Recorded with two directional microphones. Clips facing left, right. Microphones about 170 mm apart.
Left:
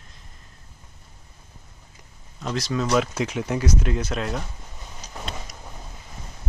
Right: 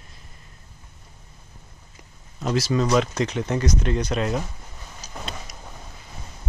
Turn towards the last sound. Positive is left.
turn(degrees=0)  # may be behind; listen again after turning